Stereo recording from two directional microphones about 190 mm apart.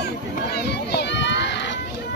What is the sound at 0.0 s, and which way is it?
Run, 60° left (ahead or behind).